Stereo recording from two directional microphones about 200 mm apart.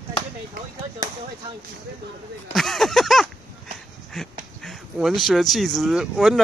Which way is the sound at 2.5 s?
Centre (ahead or behind).